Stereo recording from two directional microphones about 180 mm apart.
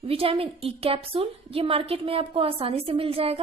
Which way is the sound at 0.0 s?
30° right (ahead or behind).